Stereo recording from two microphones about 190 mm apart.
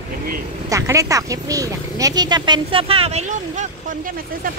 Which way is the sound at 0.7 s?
15° right (ahead or behind).